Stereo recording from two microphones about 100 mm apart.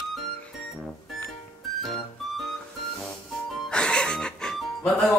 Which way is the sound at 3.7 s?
10° left (ahead or behind).